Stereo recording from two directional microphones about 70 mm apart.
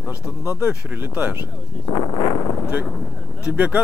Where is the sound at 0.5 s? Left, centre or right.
Right.